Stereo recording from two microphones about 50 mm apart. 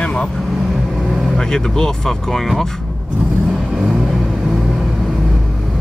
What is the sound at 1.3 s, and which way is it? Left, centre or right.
Speech, centre.